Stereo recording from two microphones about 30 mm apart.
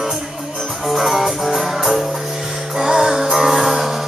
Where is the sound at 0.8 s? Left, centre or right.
Centre.